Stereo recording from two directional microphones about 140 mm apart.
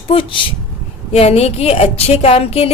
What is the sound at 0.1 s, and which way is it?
A woman's voice, 40° left (ahead or behind).